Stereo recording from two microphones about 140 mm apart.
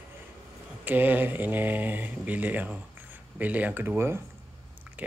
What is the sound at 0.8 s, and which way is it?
Speech, 15° right (ahead or behind).